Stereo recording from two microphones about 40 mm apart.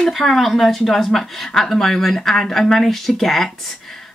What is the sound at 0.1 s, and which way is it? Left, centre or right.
A woman's voice, centre.